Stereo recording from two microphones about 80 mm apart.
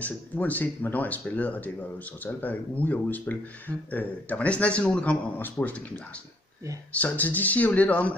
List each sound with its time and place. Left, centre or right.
0.0 s speech: left
6.9 s speech: centre